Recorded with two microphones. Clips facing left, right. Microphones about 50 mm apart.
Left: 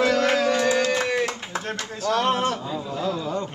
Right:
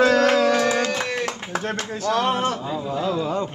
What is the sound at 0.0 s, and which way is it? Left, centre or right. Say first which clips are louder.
Music: right 4 dB; right.